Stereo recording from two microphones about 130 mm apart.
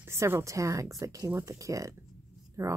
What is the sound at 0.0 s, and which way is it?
Speech, 20° right (ahead or behind).